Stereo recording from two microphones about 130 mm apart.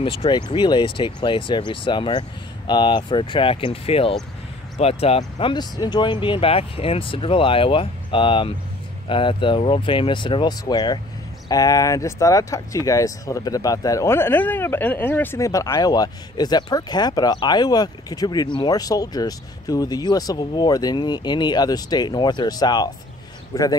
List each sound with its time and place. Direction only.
0.0 s speech: 40° left (ahead or behind)
5.5 s speech: 35° left (ahead or behind)